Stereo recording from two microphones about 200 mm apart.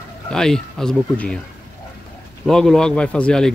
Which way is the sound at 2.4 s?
Centre (ahead or behind).